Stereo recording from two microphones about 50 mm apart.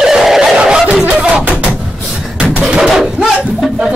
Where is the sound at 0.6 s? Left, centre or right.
Right.